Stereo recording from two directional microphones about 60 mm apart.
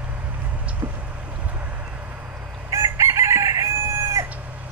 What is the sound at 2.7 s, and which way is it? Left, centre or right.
Chicken, right.